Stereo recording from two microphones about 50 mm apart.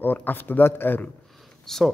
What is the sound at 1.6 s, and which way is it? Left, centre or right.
Speech, centre.